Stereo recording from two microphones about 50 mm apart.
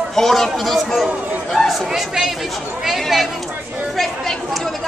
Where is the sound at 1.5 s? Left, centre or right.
Centre.